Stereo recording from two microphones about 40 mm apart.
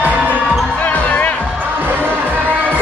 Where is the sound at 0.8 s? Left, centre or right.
Left.